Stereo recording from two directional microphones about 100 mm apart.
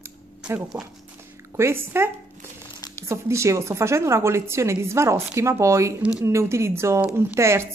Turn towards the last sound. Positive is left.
turn(degrees=-25)  # may be behind; listen again after turning